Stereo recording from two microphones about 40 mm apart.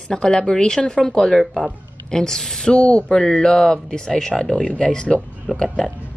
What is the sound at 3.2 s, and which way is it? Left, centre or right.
A woman's voice, centre.